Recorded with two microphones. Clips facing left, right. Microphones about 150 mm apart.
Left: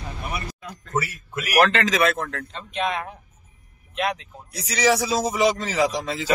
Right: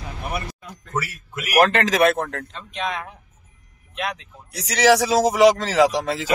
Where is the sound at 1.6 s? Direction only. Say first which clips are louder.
Right 3 dB; 55° right (ahead or behind).